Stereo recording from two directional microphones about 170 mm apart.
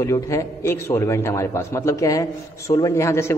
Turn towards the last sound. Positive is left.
turn(degrees=15)  # may be behind; listen again after turning